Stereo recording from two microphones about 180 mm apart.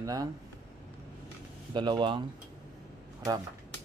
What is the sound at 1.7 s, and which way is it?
Speech, 25° right (ahead or behind).